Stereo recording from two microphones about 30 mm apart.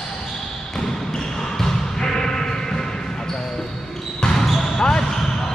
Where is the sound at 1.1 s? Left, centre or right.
Centre.